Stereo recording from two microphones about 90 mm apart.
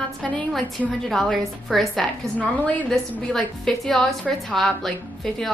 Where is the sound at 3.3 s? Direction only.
5° left (ahead or behind).